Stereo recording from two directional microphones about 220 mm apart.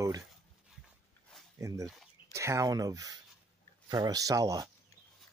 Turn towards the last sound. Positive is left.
turn(degrees=-15)  # may be behind; listen again after turning